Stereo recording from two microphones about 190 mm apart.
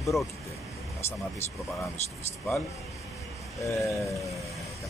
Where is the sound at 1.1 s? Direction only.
15° left (ahead or behind).